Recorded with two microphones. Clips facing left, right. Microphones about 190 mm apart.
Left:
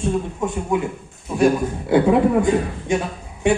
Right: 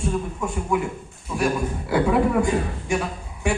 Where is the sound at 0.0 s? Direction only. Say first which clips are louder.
Left 4 dB; 25° left (ahead or behind).